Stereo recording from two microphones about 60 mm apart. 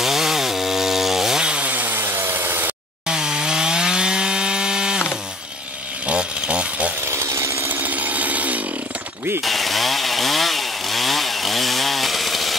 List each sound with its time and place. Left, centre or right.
0.0 s chainsaw: centre; by 2.7 s right
3.1 s sawing: centre
6.0 s chainsaw: centre
7.1 s chainsaw: right
7.6 s chainsaw: right
9.4 s chainsaw: centre